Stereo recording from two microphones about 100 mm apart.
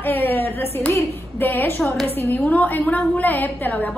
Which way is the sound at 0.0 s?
20° left (ahead or behind).